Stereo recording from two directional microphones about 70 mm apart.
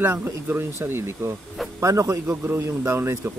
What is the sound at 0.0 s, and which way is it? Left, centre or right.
Speech, right.